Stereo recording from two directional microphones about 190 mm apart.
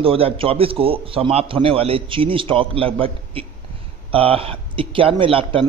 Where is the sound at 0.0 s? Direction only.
30° right (ahead or behind).